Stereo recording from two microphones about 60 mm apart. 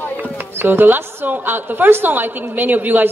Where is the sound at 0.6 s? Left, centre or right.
Right.